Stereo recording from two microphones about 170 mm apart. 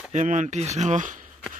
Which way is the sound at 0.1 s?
45° right (ahead or behind).